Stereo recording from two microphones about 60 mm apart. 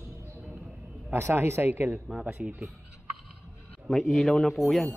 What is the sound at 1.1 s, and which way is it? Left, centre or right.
Speech, right.